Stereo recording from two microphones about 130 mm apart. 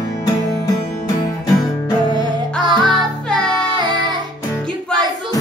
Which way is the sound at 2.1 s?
35° right (ahead or behind).